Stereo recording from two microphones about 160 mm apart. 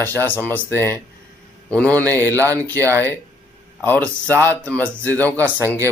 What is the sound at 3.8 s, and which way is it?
Speech, 10° left (ahead or behind).